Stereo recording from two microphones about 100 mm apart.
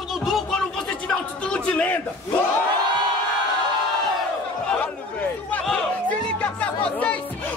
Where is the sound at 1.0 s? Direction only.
10° left (ahead or behind).